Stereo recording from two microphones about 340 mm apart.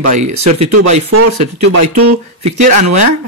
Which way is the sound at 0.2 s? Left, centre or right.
Right.